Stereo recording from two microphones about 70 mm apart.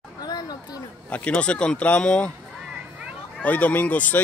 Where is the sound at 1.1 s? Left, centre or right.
Centre.